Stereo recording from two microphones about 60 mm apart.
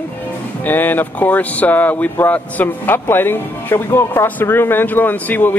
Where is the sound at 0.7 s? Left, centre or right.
Left.